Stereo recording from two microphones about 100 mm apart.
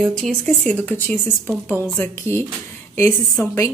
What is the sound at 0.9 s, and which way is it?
Speech, 20° left (ahead or behind).